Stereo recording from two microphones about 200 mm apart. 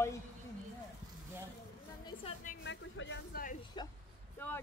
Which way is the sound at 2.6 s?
65° left (ahead or behind).